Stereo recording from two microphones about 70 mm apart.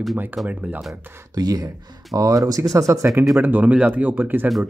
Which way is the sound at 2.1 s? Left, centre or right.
Right.